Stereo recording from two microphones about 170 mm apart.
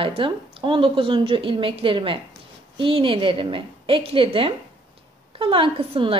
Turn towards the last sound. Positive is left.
turn(degrees=-30)  # may be behind; listen again after turning